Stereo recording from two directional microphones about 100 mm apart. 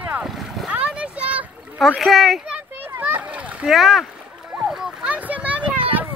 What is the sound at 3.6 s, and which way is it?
Speech, centre (ahead or behind).